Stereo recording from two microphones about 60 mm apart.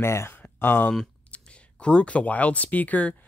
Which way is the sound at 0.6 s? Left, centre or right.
Left.